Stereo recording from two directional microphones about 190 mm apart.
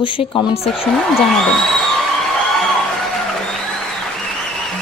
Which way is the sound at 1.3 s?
Centre (ahead or behind).